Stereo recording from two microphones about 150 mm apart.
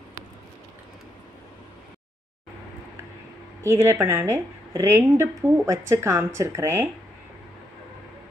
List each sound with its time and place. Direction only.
3.6 s a woman's voice: 15° right (ahead or behind)